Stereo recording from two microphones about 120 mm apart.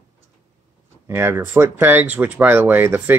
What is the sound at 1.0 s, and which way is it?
Speech, 20° right (ahead or behind).